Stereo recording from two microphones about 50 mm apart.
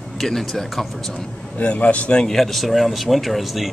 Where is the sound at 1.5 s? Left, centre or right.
Left.